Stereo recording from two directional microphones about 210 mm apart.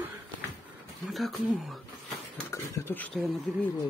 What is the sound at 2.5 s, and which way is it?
Speech, 10° left (ahead or behind).